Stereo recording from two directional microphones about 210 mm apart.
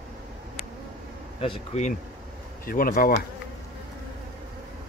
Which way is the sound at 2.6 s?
45° left (ahead or behind).